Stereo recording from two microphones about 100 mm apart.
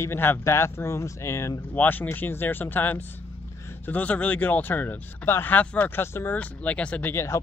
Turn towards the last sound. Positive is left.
turn(degrees=25)  # may be behind; listen again after turning